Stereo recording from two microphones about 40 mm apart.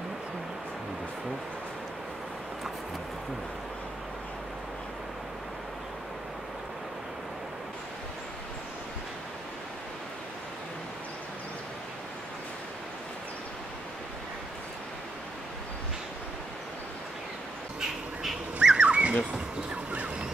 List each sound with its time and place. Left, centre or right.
18.6 s bird: centre
18.9 s bird: right
19.9 s a sound: right